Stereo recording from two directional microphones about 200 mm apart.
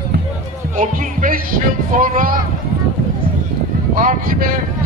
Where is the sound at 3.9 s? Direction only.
45° right (ahead or behind).